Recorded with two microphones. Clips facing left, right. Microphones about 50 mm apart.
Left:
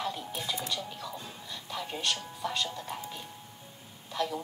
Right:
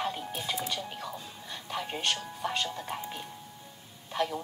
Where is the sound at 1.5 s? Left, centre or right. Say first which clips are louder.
Right 3 dB; right.